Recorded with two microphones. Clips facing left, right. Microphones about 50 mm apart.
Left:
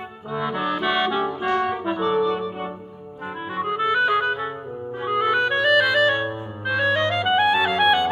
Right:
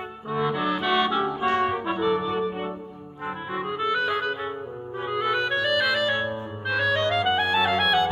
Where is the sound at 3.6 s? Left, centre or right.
Left.